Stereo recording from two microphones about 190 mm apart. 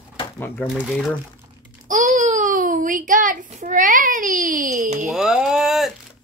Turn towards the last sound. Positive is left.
turn(degrees=0)  # may be behind; listen again after turning